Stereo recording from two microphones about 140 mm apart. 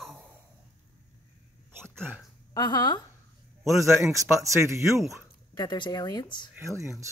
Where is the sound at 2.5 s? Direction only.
30° left (ahead or behind).